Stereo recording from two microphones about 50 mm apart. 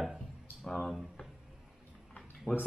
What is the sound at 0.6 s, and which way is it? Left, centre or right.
Speech, centre.